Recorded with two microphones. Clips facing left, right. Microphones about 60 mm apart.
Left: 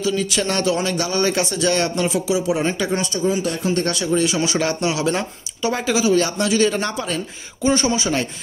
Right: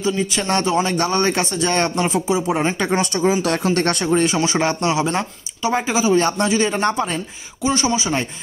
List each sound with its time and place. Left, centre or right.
0.0 s speech: right
3.2 s speech: right
3.7 s speech: right
6.2 s speech: right
6.5 s speech: right
7.6 s a man's voice: centre